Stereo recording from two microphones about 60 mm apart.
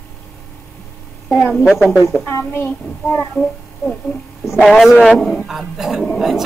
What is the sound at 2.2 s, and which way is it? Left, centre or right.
Speech, left.